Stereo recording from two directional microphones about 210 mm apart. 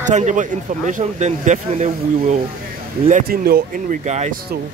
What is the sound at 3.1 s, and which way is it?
Speech, 40° right (ahead or behind).